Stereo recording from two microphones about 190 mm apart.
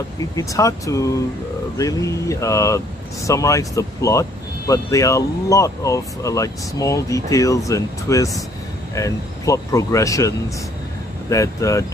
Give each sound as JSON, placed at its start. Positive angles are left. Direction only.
{"t": 0.4, "sound": "speech", "side_deg": 15}